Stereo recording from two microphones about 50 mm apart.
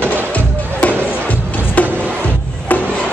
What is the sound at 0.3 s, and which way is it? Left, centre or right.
Music, left.